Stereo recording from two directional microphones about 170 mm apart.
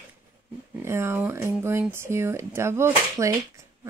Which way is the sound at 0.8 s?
15° right (ahead or behind).